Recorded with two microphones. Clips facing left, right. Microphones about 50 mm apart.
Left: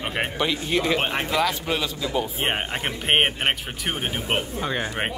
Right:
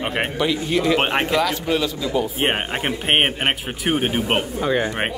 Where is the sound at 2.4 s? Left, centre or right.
Centre.